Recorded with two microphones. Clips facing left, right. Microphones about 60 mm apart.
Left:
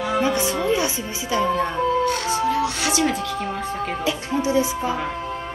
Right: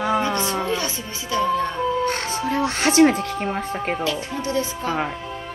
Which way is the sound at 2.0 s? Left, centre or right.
Right.